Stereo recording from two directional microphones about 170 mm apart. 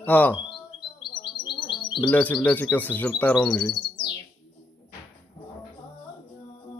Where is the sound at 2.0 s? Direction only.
10° left (ahead or behind).